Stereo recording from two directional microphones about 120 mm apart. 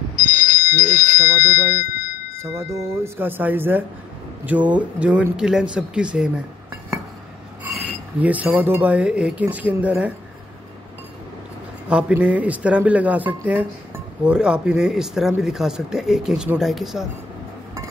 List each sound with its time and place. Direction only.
0.1 s telephone bell ringing: 90° left
1.4 s speech: 90° left
2.3 s speech: 25° right (ahead or behind); by 6.4 s 10° right (ahead or behind)
8.2 s speech: 15° right (ahead or behind)
11.9 s speech: 10° right (ahead or behind)